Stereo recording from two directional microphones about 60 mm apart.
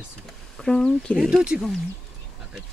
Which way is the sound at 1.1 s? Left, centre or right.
Left.